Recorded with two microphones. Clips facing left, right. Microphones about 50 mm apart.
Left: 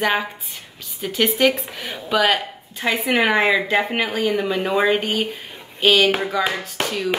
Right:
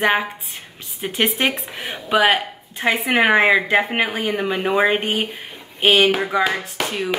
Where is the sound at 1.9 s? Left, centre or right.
Centre.